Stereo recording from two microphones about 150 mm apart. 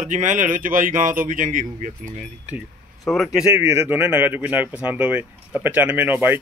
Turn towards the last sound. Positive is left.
turn(degrees=-15)  # may be behind; listen again after turning